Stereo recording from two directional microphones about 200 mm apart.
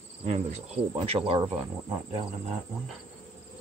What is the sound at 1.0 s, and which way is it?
Speech, 30° right (ahead or behind).